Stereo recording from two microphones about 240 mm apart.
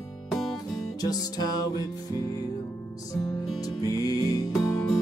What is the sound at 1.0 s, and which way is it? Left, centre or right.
Music, centre.